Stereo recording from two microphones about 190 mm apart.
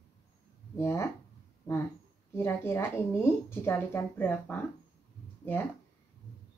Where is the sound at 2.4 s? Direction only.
15° left (ahead or behind).